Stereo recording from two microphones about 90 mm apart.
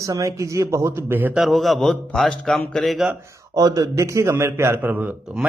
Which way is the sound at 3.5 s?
45° right (ahead or behind).